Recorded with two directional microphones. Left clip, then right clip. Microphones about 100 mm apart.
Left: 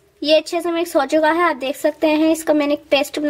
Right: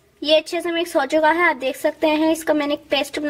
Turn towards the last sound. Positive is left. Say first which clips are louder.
# left 4 dB
turn(degrees=15)  # may be behind; listen again after turning